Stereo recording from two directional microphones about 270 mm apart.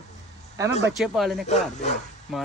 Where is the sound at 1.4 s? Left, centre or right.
Left.